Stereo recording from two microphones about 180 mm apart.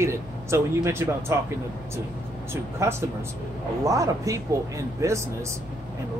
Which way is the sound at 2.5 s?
15° right (ahead or behind).